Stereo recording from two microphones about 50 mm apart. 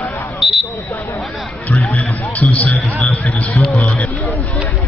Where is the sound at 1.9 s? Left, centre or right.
Left.